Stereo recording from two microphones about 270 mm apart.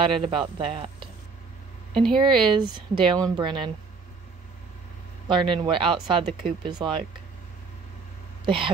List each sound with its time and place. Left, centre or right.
0.0 s speech: centre
2.2 s speech: centre
5.3 s speech: centre
8.5 s speech: centre